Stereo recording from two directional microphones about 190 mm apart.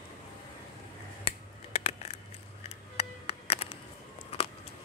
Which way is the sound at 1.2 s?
30° left (ahead or behind).